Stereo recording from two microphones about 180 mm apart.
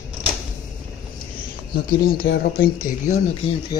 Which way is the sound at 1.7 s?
60° left (ahead or behind).